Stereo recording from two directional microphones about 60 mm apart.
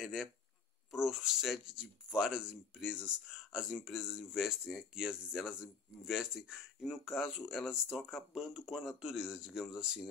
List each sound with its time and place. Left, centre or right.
0.0 s speech: centre